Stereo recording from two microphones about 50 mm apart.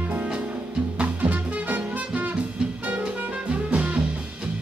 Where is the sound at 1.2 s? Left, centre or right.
Right.